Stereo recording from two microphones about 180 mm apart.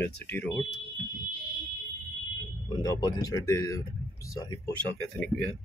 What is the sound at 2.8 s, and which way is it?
Speech, 20° left (ahead or behind).